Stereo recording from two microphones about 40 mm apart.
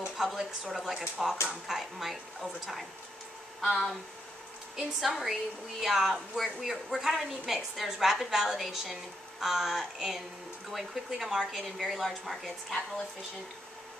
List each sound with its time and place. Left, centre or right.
0.2 s a woman's voice: centre
4.7 s a woman's voice: centre